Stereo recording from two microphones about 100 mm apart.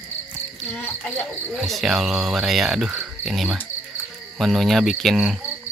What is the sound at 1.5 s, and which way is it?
Speech, centre (ahead or behind).